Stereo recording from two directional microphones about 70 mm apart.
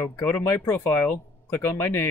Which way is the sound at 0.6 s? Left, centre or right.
Left.